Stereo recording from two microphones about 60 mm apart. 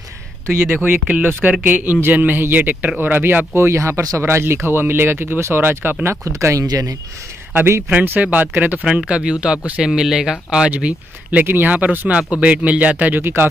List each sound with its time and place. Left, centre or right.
0.8 s speech: right
3.5 s speech: right
4.2 s speech: right
6.2 s speech: right
7.9 s speech: right
8.8 s speech: centre
10.7 s speech: right
11.4 s speech: right
12.1 s speech: centre
13.2 s speech: right